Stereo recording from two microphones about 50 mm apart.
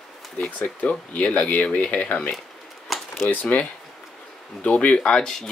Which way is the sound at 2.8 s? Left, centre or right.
Centre.